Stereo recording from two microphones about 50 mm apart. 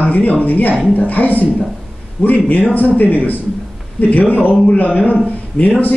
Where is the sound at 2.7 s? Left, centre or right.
Left.